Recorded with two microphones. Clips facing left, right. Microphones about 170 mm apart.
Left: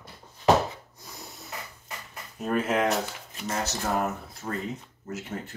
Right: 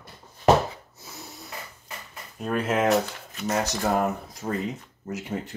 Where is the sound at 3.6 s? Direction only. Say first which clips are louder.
Right 1 dB; 15° right (ahead or behind).